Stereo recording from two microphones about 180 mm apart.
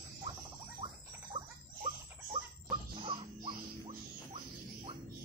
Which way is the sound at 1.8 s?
30° right (ahead or behind).